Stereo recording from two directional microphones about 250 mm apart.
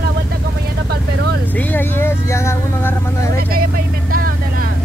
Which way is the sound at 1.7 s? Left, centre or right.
Centre.